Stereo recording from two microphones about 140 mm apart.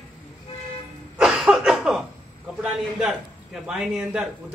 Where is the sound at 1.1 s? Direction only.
Centre (ahead or behind).